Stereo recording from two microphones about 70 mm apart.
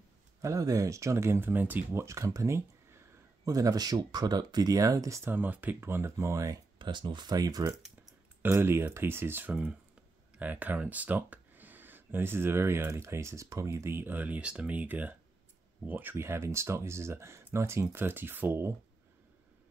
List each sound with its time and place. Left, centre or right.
0.4 s speech: right
2.0 s speech: right
3.4 s speech: right
4.7 s speech: right
5.2 s speech: right
6.9 s speech: right
8.4 s speech: right